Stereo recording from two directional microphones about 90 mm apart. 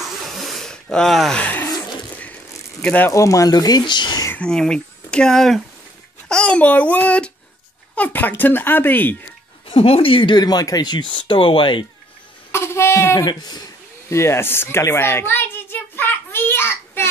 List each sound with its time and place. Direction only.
0.4 s a sound: centre (ahead or behind)
1.4 s a sound: 20° left (ahead or behind)
2.8 s speech: 15° left (ahead or behind)
3.1 s speech: 35° left (ahead or behind); by 4.3 s 55° left (ahead or behind)
4.4 s a child's voice: 10° left (ahead or behind)
9.7 s speech: 90° left; by 10.4 s 70° left (ahead or behind)
10.4 s speech: 45° left (ahead or behind)
11.1 s speech: 75° left (ahead or behind)
12.5 s speech: 30° left (ahead or behind)
13.2 s speech: 50° left (ahead or behind)
14.0 s a sound: 30° left (ahead or behind)